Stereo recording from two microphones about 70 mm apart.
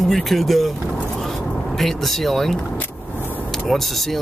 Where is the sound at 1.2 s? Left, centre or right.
Centre.